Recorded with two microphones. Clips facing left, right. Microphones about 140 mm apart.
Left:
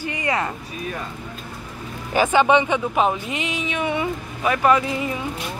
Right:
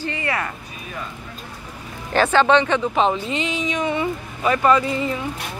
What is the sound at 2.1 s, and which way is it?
Speech, 10° left (ahead or behind).